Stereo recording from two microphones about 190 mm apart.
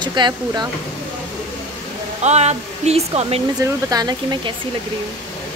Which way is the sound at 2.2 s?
35° right (ahead or behind).